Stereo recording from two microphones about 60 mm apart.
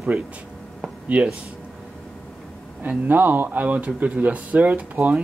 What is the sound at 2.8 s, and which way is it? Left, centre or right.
Speech, right.